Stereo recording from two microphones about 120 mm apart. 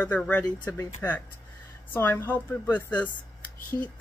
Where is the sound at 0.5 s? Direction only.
25° left (ahead or behind).